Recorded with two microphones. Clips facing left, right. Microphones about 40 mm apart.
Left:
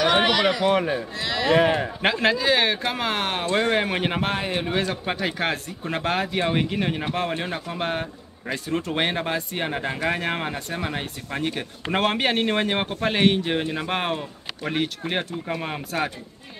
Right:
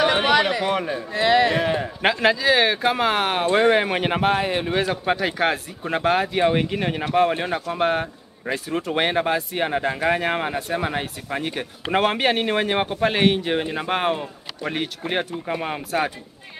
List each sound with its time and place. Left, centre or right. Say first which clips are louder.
0.4 s speech: even; centre
1.1 s speech: right 9 dB; right
1.5 s speech: left 3 dB; centre
2.0 s speech: right 2 dB; centre